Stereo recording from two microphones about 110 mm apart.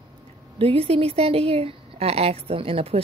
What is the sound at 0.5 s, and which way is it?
A woman's voice, 60° right (ahead or behind).